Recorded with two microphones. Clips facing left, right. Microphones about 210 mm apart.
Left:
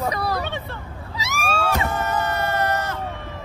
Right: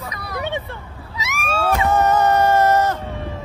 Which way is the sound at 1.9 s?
45° right (ahead or behind).